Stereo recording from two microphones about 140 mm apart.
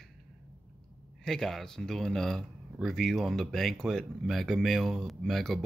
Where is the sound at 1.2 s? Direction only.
5° left (ahead or behind).